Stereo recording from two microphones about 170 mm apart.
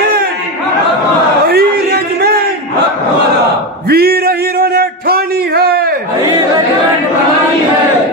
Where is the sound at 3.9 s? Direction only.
65° right (ahead or behind).